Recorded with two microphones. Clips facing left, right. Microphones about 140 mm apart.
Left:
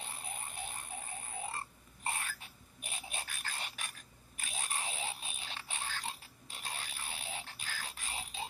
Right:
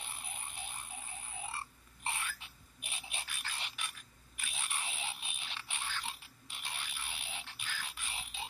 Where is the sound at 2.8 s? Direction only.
45° left (ahead or behind).